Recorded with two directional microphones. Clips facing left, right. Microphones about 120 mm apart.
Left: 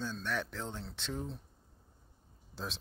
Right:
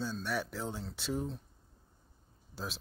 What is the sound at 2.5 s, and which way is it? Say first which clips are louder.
Speech: even; 5° right (ahead or behind).